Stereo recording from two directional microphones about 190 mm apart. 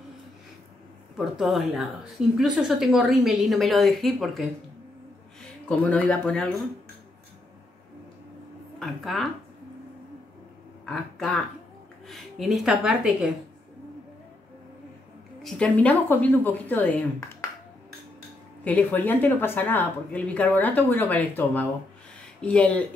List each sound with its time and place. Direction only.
1.1 s a woman's voice: 5° right (ahead or behind)
8.7 s a woman's voice: centre (ahead or behind)
10.9 s a woman's voice: centre (ahead or behind)
15.4 s speech: 5° left (ahead or behind)
18.6 s speech: 10° left (ahead or behind)